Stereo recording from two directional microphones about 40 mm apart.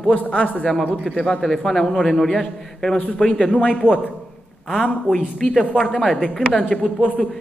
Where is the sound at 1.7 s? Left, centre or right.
Centre; by 3.4 s left.